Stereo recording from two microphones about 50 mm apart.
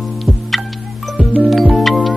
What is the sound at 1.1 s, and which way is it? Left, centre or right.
Music, right.